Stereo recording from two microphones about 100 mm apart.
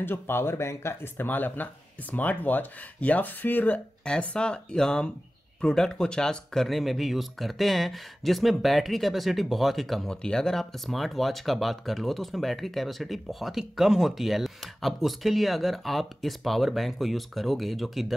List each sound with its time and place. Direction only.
0.0 s speech: 20° left (ahead or behind); by 18.1 s centre (ahead or behind)